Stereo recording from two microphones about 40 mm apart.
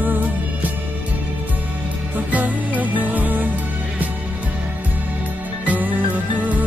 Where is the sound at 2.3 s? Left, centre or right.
Right.